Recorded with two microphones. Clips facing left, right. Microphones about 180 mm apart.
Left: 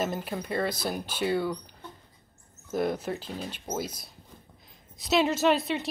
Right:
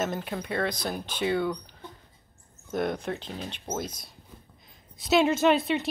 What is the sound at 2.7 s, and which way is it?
Speech, 5° left (ahead or behind).